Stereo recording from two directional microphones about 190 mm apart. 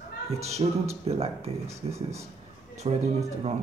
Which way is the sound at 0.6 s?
30° right (ahead or behind).